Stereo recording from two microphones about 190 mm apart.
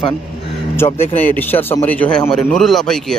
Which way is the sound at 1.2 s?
10° left (ahead or behind).